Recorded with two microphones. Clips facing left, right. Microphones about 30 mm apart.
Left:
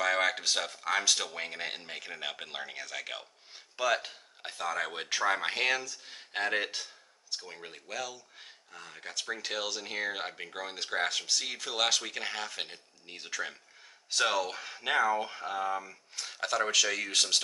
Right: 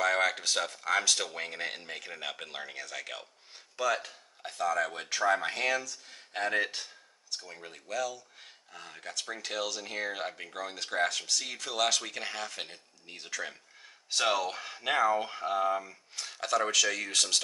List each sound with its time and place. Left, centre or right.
0.0 s speech: centre
3.7 s speech: left
6.3 s speech: centre
8.7 s speech: centre
9.0 s speech: centre